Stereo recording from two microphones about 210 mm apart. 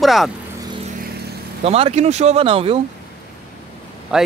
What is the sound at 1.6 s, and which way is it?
Speech, 30° right (ahead or behind).